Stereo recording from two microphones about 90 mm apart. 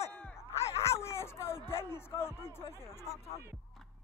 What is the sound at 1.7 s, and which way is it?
Speech, 30° left (ahead or behind).